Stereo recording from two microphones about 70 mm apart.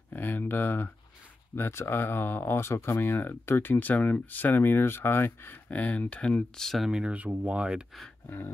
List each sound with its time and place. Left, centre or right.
0.1 s a sound: left
1.5 s speech: left; by 6.3 s centre
6.3 s speech: centre
6.9 s speech: centre